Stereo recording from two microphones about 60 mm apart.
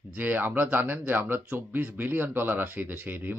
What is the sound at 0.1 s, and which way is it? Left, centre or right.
Speech, right.